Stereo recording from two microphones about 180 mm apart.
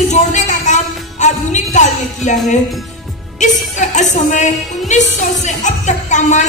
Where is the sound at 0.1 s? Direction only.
40° left (ahead or behind).